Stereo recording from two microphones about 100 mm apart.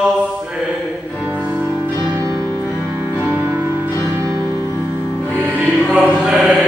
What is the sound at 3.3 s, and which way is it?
Music, 20° right (ahead or behind).